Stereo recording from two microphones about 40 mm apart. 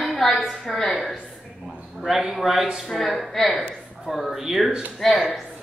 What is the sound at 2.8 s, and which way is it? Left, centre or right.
A man's voice, centre.